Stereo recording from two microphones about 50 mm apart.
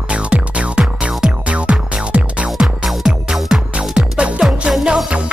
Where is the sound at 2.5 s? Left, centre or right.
Centre.